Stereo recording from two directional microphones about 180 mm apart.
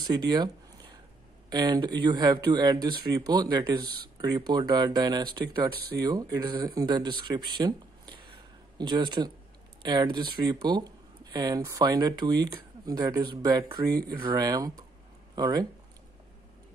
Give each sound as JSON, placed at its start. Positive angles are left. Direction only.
{"t": 0.0, "sound": "a man's voice", "side_deg": -20}
{"t": 1.5, "sound": "a man's voice", "side_deg": -25}
{"t": 7.5, "sound": "a sound", "side_deg": -25}
{"t": 8.7, "sound": "a man's voice", "side_deg": -25}